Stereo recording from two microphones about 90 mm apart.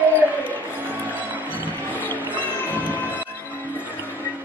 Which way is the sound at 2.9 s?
20° left (ahead or behind).